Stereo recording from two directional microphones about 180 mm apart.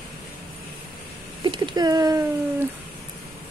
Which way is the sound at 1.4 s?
25° right (ahead or behind).